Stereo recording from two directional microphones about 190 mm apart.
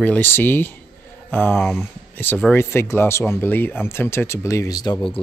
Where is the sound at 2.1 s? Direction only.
10° left (ahead or behind).